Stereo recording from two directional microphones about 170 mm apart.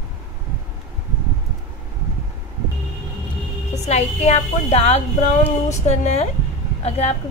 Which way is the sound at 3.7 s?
40° left (ahead or behind).